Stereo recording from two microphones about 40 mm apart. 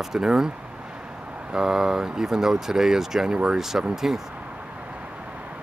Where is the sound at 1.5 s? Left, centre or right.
Centre.